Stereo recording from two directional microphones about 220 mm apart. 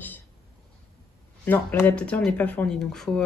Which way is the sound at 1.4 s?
10° left (ahead or behind).